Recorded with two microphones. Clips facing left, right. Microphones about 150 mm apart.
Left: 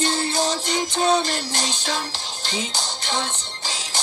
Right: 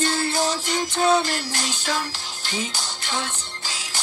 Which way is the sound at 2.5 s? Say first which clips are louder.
Left 1 dB; 15° left (ahead or behind).